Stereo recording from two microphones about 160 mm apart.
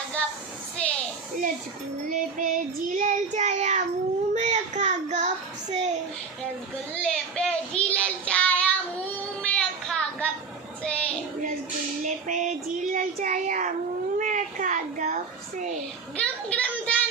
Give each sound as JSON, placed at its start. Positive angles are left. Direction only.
{"t": 0.7, "sound": "children playing", "side_deg": 5}
{"t": 2.0, "sound": "child singing", "side_deg": -60}
{"t": 7.0, "sound": "child singing", "side_deg": 5}
{"t": 9.4, "sound": "a sound", "side_deg": 5}
{"t": 10.8, "sound": "child singing", "side_deg": 5}
{"t": 12.0, "sound": "child singing", "side_deg": -50}
{"t": 16.2, "sound": "a sound", "side_deg": 10}